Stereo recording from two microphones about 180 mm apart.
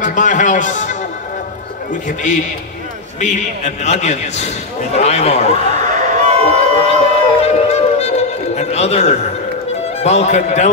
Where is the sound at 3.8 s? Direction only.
40° left (ahead or behind).